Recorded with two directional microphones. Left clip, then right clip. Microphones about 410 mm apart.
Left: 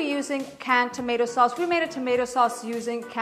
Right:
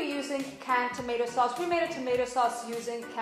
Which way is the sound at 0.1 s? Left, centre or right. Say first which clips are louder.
Left 5 dB; left.